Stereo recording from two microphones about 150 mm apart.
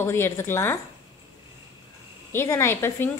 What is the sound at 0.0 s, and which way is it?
Speech, 15° left (ahead or behind).